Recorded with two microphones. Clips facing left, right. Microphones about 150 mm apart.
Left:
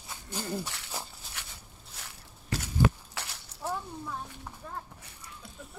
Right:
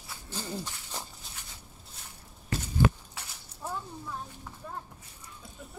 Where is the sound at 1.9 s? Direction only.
90° left.